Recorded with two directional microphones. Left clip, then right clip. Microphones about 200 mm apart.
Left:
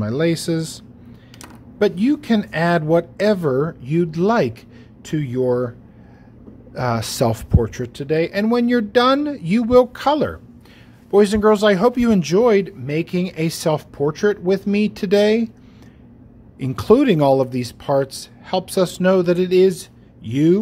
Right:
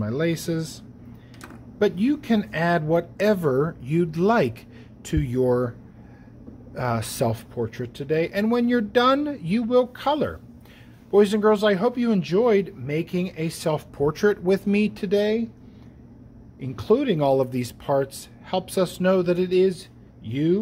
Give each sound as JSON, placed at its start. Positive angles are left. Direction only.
{"t": 0.0, "sound": "speech", "side_deg": 15}
{"t": 6.7, "sound": "speech", "side_deg": 15}
{"t": 15.0, "sound": "speech", "side_deg": 30}
{"t": 16.5, "sound": "speech", "side_deg": 30}